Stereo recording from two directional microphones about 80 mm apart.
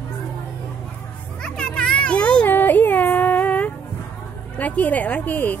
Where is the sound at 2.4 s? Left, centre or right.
Left.